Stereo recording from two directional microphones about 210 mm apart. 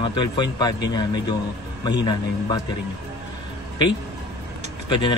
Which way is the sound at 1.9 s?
20° left (ahead or behind).